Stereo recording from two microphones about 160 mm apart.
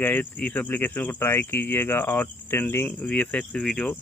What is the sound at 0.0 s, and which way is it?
Speech, 10° left (ahead or behind).